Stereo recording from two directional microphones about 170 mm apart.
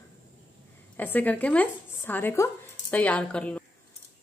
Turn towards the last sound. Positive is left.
turn(degrees=5)  # may be behind; listen again after turning